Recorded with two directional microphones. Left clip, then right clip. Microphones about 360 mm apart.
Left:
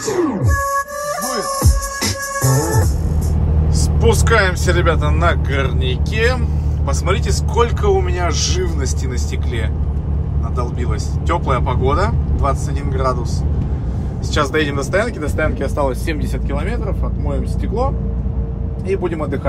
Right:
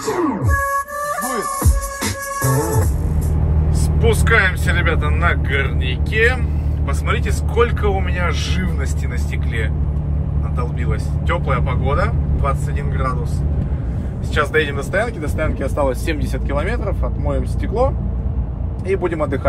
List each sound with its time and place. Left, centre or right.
0.0 s music: centre
4.0 s speech: centre
11.4 s speech: centre
14.3 s speech: centre
15.7 s speech: centre
18.9 s speech: centre